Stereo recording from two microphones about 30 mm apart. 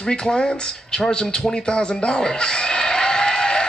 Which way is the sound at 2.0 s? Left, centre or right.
Left.